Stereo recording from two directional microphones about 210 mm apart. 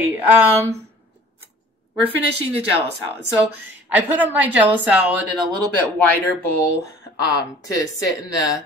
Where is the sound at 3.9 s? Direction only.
10° right (ahead or behind).